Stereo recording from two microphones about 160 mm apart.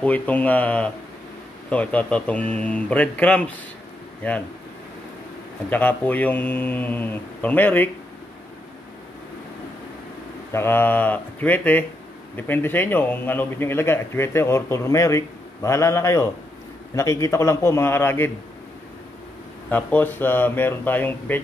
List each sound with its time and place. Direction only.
0.0 s a man's voice: 10° left (ahead or behind)
5.7 s a man's voice: 10° left (ahead or behind)
10.5 s a man's voice: 15° left (ahead or behind)
19.7 s a man's voice: 10° left (ahead or behind)